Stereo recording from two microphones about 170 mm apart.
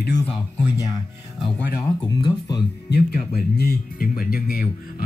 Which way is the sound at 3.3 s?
65° left (ahead or behind).